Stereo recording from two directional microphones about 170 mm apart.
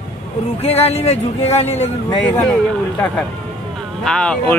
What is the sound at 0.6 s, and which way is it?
Speech, 35° left (ahead or behind).